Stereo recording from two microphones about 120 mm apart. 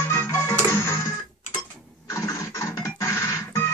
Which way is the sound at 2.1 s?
25° left (ahead or behind).